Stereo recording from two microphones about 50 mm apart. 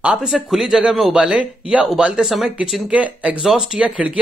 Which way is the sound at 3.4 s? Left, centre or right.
Centre.